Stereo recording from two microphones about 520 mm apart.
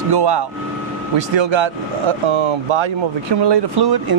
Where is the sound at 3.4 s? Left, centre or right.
Right.